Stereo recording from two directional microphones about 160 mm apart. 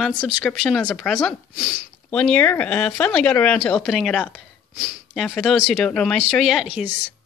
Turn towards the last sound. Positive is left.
turn(degrees=-5)  # may be behind; listen again after turning